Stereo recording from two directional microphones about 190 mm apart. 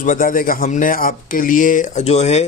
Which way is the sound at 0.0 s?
45° left (ahead or behind).